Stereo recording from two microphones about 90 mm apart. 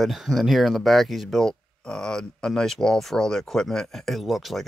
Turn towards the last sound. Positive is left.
turn(degrees=0)  # may be behind; listen again after turning